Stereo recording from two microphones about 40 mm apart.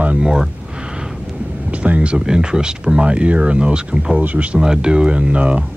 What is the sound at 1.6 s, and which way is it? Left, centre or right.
Speech, right.